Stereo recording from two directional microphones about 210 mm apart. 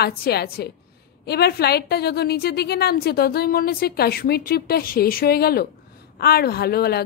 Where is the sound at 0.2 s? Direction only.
50° left (ahead or behind).